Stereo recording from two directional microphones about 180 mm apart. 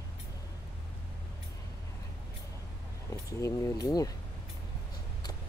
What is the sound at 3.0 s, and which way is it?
Speech, 15° left (ahead or behind).